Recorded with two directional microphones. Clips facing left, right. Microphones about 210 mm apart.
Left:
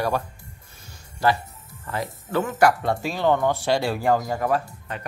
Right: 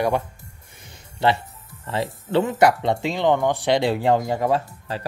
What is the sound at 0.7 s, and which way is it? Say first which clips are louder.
Music: right 5 dB; 20° right (ahead or behind).